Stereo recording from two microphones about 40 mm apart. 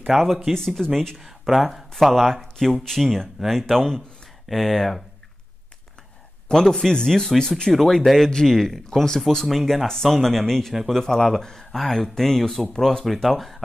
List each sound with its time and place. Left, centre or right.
0.0 s speech: centre
6.5 s speech: centre
7.7 s speech: centre
9.5 s speech: centre
10.7 s speech: centre
11.0 s speech: centre